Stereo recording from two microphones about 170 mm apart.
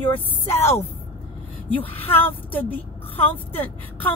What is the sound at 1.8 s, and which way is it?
Speech, 35° left (ahead or behind).